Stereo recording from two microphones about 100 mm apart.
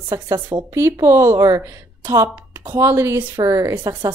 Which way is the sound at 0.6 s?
25° right (ahead or behind).